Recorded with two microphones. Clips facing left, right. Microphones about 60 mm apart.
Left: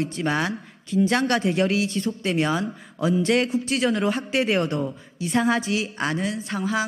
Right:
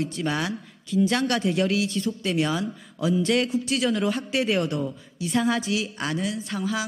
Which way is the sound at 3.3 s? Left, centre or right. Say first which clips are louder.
Left 1 dB; left.